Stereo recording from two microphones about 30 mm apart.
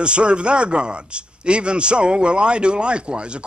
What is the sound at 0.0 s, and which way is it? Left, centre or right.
Speech, right.